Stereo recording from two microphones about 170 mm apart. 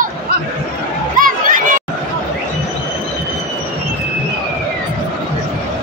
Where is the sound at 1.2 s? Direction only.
50° right (ahead or behind).